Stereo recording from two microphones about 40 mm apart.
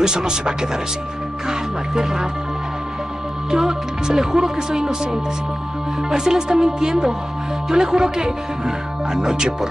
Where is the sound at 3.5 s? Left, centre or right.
Centre.